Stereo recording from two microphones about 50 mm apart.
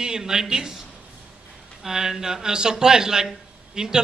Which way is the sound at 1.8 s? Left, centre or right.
Centre.